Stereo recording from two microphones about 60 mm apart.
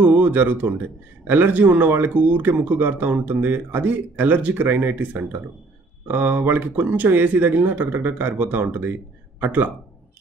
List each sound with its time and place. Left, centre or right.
0.0 s speech: right